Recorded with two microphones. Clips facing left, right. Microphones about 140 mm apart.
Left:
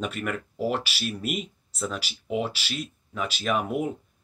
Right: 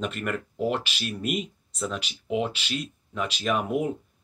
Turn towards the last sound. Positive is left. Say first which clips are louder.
# right 1 dB
turn(degrees=0)  # may be behind; listen again after turning